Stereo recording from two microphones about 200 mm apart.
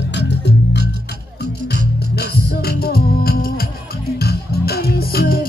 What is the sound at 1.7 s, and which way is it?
Music, 50° left (ahead or behind).